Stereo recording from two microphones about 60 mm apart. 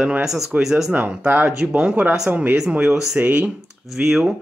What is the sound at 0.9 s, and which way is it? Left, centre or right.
Speech, right.